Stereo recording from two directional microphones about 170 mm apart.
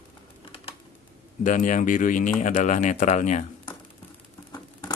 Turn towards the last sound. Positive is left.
turn(degrees=25)  # may be behind; listen again after turning